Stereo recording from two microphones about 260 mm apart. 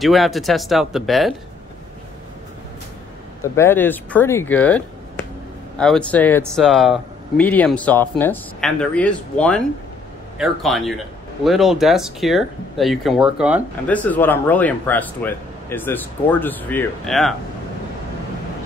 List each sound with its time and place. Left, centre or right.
0.0 s speech: centre
3.4 s speech: centre